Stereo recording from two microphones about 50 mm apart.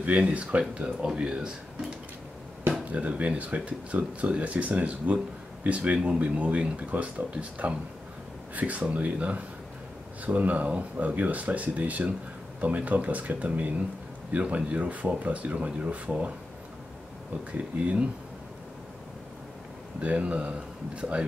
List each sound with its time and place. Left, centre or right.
0.0 s speech: right
2.9 s speech: right
17.5 s speech: right
20.0 s speech: right